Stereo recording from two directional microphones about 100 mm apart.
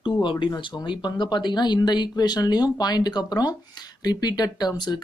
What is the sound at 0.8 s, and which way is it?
A man's voice, 50° left (ahead or behind).